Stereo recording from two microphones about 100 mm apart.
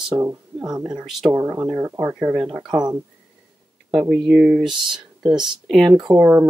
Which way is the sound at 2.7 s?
40° right (ahead or behind).